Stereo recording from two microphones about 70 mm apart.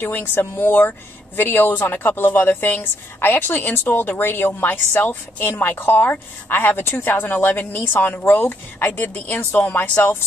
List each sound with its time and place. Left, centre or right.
0.0 s speech: left